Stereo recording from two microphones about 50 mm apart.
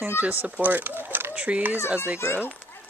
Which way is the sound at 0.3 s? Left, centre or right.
Right.